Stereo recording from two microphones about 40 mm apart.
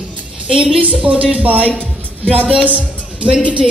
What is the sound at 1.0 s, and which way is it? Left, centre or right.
Speech, right.